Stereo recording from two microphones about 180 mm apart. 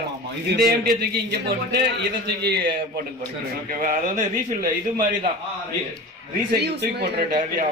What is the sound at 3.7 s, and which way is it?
Speech, 45° right (ahead or behind).